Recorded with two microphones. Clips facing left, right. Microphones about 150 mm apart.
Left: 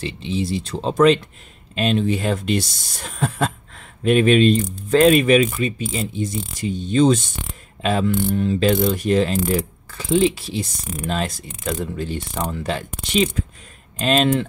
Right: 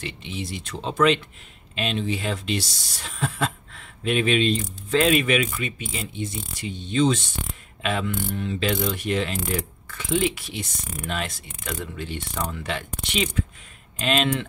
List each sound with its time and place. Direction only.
0.0 s speech: 30° left (ahead or behind)